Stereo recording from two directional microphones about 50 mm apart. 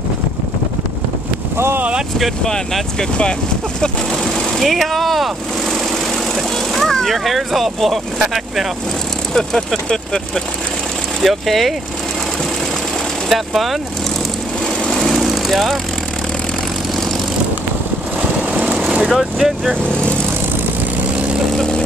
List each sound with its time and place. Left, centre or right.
2.4 s speech: centre
9.3 s speech: centre
11.2 s speech: centre
13.3 s speech: centre
14.9 s vehicle: centre
18.5 s vehicle: right
19.1 s speech: centre
21.5 s vehicle: centre